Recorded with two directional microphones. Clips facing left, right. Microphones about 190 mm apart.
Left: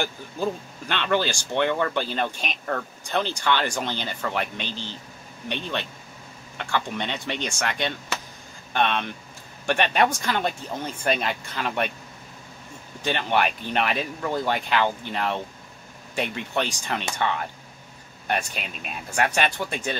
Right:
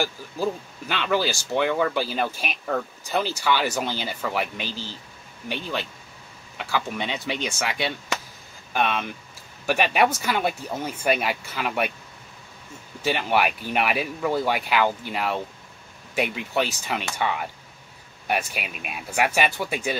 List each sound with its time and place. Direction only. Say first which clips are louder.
0.0 s speech: right 1 dB; 5° right (ahead or behind)
13.0 s speech: right 1 dB; 5° right (ahead or behind)